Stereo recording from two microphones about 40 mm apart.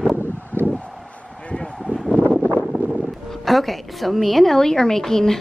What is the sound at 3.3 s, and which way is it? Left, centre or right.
A woman's voice, centre.